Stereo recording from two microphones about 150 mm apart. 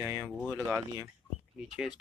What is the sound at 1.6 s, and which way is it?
Speech, 5° right (ahead or behind).